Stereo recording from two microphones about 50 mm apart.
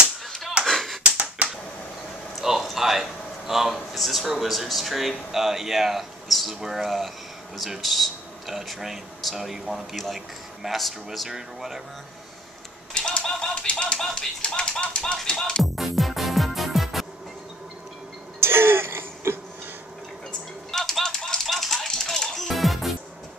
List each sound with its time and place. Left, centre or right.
0.7 s tap: centre
1.0 s finger snapping: right
2.4 s a man's voice: centre
12.9 s typewriter: centre
14.1 s speech: centre
15.6 s music: centre
18.4 s throat clearing: right
20.7 s typewriter: centre